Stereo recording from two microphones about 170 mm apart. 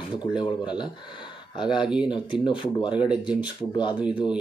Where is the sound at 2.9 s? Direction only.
5° right (ahead or behind).